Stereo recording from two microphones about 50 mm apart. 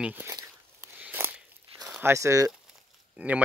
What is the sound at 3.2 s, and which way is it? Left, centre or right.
Speech, right.